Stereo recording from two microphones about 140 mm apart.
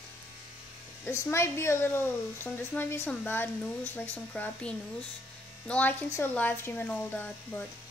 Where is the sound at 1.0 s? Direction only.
20° left (ahead or behind).